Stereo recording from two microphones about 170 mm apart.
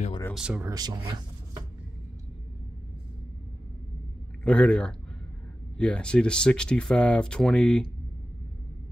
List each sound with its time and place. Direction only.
0.3 s speech: 5° right (ahead or behind)
0.7 s speech: 25° right (ahead or behind)
4.4 s speech: 5° left (ahead or behind)